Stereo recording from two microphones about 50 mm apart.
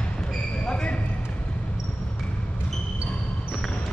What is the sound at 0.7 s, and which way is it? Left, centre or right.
Basketball bounce, left.